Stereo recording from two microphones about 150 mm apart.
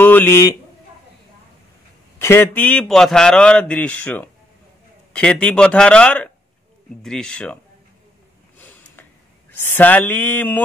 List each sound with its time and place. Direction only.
0.0 s speech: 15° left (ahead or behind)
2.1 s a man's voice: 15° left (ahead or behind)
8.5 s a sound: 10° left (ahead or behind)
9.7 s a man's voice: 10° left (ahead or behind)